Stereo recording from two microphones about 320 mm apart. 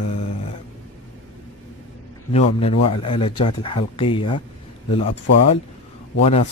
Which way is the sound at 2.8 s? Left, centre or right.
Centre.